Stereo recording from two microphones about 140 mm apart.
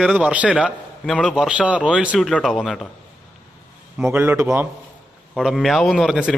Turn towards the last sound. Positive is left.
turn(degrees=0)  # may be behind; listen again after turning